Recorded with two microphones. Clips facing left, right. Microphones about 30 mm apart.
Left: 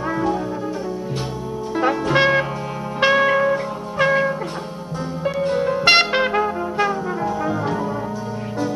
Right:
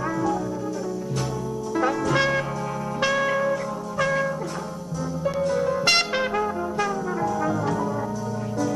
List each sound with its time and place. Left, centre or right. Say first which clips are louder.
1.8 s music: left 5 dB; left